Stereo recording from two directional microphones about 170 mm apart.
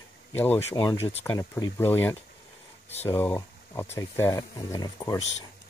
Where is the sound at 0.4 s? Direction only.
15° left (ahead or behind).